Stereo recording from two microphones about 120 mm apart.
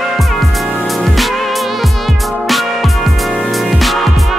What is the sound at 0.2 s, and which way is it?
Music, centre (ahead or behind).